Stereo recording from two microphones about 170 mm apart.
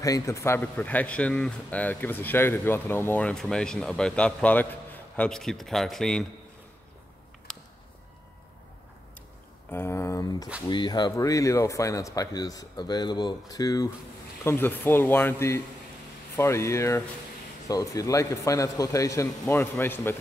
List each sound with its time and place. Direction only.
0.0 s a man's voice: 20° left (ahead or behind); by 6.2 s centre (ahead or behind)
7.5 s a sound: 5° left (ahead or behind)
9.7 s a man's voice: 15° left (ahead or behind)